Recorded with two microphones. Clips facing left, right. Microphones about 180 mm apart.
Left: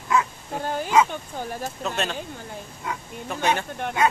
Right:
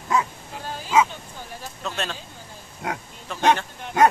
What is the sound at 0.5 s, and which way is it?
Speech, 55° left (ahead or behind).